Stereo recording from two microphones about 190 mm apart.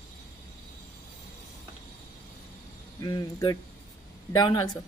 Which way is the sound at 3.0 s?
20° left (ahead or behind).